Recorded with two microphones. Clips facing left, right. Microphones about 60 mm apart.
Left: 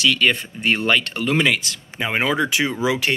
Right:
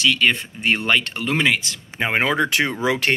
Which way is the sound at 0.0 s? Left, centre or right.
Centre.